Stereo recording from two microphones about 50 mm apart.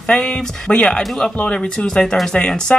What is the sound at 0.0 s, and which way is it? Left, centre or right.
Speech, centre.